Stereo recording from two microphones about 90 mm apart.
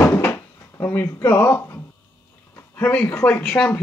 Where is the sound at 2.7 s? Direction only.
20° left (ahead or behind).